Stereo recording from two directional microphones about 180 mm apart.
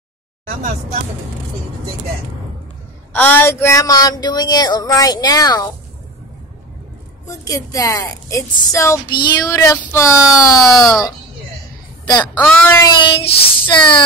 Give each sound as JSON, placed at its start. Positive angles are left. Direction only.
{"t": 3.1, "sound": "speech", "side_deg": 10}
{"t": 7.2, "sound": "a woman's voice", "side_deg": 20}
{"t": 12.1, "sound": "speech", "side_deg": 25}
{"t": 12.5, "sound": "a woman's voice", "side_deg": 10}
{"t": 13.0, "sound": "speech", "side_deg": 25}